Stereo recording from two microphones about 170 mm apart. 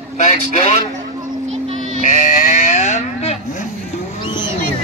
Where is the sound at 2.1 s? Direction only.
50° left (ahead or behind).